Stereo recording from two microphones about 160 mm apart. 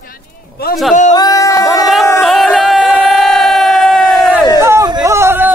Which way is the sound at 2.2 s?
Centre (ahead or behind).